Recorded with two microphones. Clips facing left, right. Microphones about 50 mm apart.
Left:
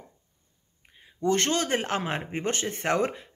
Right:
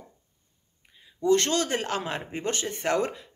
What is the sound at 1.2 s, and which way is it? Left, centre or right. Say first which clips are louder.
Speech: right 2 dB; left.